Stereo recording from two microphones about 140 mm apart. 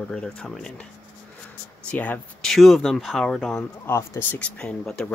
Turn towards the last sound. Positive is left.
turn(degrees=5)  # may be behind; listen again after turning